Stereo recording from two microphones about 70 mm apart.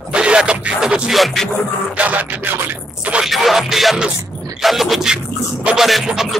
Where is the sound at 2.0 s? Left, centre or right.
Right.